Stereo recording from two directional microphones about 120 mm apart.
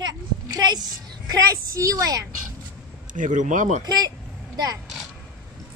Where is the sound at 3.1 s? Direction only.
90° right.